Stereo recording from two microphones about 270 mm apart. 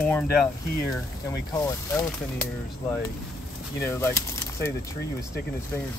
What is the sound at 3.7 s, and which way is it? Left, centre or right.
Speech, centre.